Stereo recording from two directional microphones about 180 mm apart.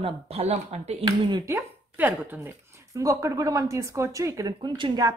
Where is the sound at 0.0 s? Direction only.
35° right (ahead or behind).